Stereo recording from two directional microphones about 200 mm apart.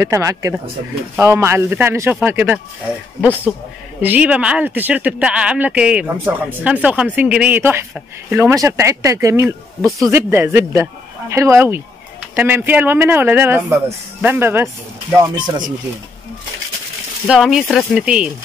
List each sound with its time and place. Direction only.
0.0 s speech: 15° right (ahead or behind)
4.0 s speech: 10° right (ahead or behind)
17.3 s speech: 5° right (ahead or behind)